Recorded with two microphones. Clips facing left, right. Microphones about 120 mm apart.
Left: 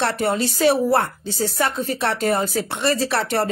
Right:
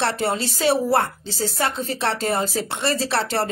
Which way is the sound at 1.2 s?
60° left (ahead or behind).